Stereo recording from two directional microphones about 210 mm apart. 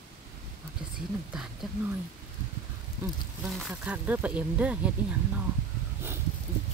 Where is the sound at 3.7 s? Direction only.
5° right (ahead or behind).